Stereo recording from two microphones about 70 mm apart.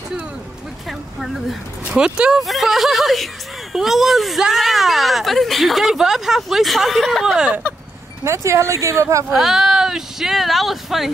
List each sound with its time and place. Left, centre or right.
0.8 s a sound: centre
2.0 s speech: centre
2.4 s speech: centre
8.2 s speech: right
9.3 s speech: centre